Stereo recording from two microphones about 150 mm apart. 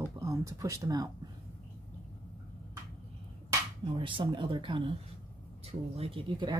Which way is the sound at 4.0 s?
35° right (ahead or behind).